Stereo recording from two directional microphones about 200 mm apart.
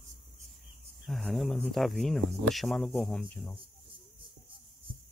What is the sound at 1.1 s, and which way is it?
Speech, centre (ahead or behind).